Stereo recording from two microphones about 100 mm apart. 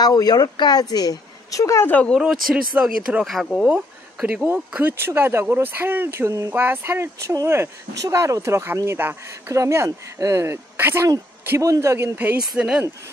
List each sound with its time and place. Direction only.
0.0 s a woman's voice: 40° left (ahead or behind)
1.9 s speech: 15° left (ahead or behind)
2.1 s speech: 10° right (ahead or behind)
3.3 s speech: centre (ahead or behind); by 12.1 s 30° right (ahead or behind)
12.2 s speech: 15° right (ahead or behind)